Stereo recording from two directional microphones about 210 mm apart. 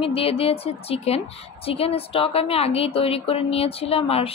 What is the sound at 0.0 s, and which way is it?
Speech, 25° left (ahead or behind).